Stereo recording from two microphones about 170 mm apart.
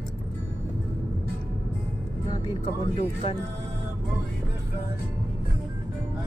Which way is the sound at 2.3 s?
30° left (ahead or behind).